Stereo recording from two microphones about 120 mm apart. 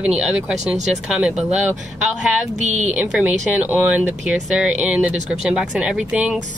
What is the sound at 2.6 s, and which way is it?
Speech, 75° right (ahead or behind).